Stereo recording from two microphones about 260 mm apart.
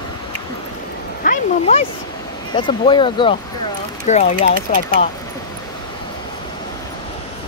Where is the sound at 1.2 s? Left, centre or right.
Left.